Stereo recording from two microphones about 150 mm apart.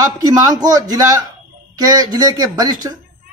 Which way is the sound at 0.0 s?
25° right (ahead or behind).